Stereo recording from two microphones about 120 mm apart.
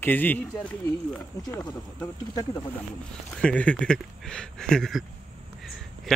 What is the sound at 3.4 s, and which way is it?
Speech, 10° left (ahead or behind).